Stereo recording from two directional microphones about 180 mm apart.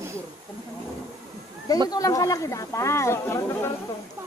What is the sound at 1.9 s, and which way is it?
Speech, 20° left (ahead or behind).